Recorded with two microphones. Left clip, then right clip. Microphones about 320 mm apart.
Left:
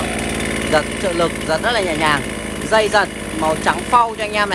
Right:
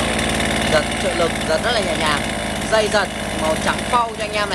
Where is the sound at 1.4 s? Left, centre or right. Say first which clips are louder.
Left 1 dB; left.